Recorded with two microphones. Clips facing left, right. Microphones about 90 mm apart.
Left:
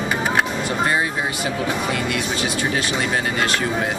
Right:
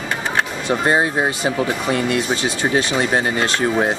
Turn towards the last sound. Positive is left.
turn(degrees=-30)  # may be behind; listen again after turning